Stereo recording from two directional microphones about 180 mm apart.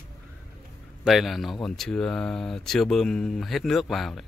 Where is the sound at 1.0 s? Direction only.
Centre (ahead or behind).